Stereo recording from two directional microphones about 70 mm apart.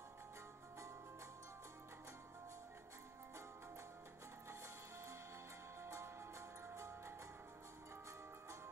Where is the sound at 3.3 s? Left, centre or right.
Right.